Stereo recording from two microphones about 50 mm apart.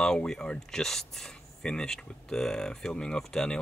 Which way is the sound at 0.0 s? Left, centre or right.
Centre.